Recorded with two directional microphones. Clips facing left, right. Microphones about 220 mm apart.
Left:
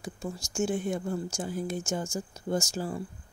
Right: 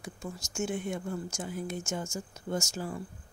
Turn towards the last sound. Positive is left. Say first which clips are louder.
# left 3 dB
turn(degrees=35)  # may be behind; listen again after turning